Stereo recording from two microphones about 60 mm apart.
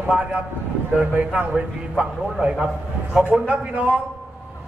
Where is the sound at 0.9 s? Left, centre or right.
Right.